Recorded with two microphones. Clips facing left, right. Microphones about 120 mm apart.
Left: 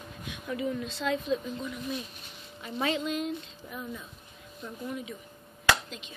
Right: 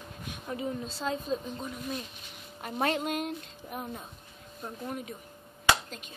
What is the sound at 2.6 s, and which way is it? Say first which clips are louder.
A woman's voice: right 1 dB; 55° right (ahead or behind).